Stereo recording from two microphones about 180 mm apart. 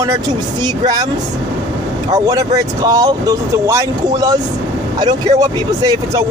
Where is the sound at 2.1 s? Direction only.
20° right (ahead or behind).